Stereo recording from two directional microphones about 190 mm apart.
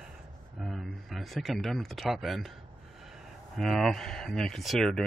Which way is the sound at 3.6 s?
Centre (ahead or behind).